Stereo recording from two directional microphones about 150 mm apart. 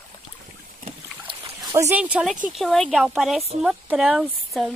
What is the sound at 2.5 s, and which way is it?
Speech, centre (ahead or behind).